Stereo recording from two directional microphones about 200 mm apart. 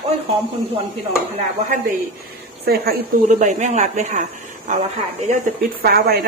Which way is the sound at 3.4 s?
35° right (ahead or behind).